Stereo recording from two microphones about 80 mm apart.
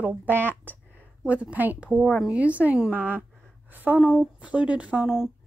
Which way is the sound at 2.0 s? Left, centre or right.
Centre.